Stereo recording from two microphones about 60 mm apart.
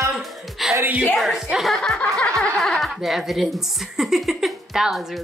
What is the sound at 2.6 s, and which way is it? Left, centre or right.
Speech, centre.